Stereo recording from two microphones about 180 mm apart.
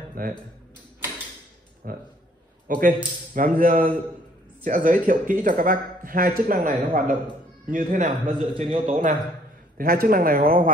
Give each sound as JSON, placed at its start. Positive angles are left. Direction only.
{"t": 0.2, "sound": "speech", "side_deg": -50}
{"t": 1.8, "sound": "speech", "side_deg": -55}
{"t": 8.5, "sound": "a man's voice", "side_deg": -30}
{"t": 8.8, "sound": "speech", "side_deg": -45}
{"t": 9.8, "sound": "speech", "side_deg": -55}